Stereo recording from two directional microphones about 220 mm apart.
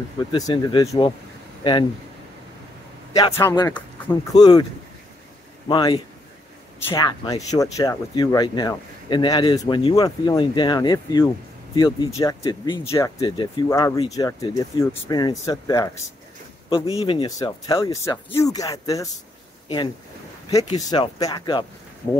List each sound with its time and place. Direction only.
0.3 s speech: 20° left (ahead or behind)
3.1 s speech: 15° left (ahead or behind)
5.7 s speech: 20° left (ahead or behind)
16.6 s speech: 25° left (ahead or behind)
20.9 s speech: 20° left (ahead or behind)